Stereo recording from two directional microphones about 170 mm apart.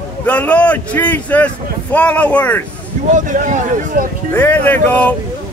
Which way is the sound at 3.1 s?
50° right (ahead or behind).